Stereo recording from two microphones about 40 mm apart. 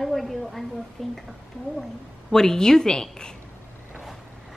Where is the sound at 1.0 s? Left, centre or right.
Centre.